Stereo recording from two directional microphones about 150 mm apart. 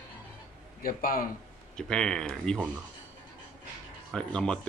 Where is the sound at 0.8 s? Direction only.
70° left (ahead or behind).